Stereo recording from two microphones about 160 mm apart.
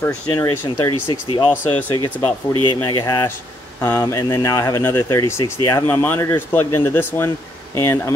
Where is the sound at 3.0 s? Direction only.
25° left (ahead or behind).